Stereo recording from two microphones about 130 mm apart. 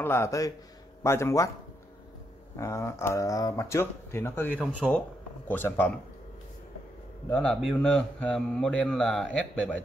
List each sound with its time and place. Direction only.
0.0 s speech: 20° left (ahead or behind)
2.5 s speech: 20° left (ahead or behind)
7.2 s a man's voice: 10° left (ahead or behind)